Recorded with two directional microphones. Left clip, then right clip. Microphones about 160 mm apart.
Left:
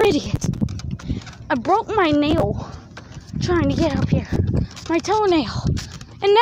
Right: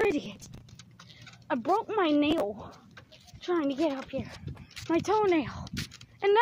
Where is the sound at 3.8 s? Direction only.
5° right (ahead or behind).